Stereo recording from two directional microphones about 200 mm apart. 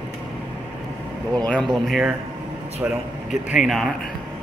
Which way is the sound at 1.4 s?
5° left (ahead or behind).